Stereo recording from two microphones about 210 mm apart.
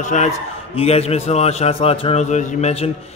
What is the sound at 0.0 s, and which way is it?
A man's voice, 35° left (ahead or behind).